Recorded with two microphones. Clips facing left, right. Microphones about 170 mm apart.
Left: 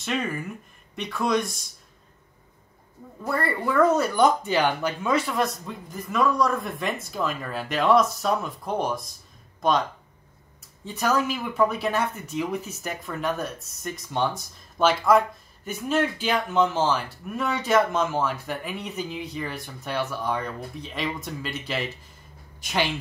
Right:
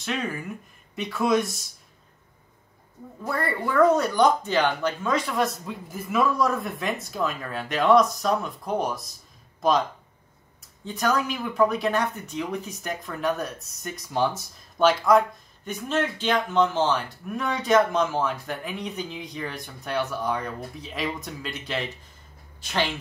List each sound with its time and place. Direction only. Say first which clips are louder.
0.0 s speech: left 1 dB; centre (ahead or behind)
3.2 s speech: left 1 dB; centre (ahead or behind)
10.9 s speech: left 1 dB; 5° left (ahead or behind)
22.6 s speech: left 1 dB; 15° left (ahead or behind)